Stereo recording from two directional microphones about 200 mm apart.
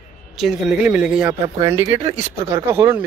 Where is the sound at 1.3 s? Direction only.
30° right (ahead or behind).